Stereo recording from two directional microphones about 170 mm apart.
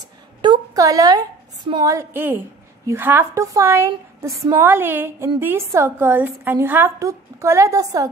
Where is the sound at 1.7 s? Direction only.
20° right (ahead or behind).